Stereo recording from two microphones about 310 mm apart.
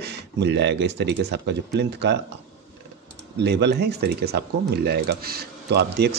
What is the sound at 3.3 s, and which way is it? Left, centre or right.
Speech, right.